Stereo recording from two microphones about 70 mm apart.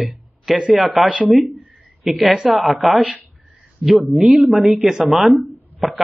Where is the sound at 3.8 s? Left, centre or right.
Centre.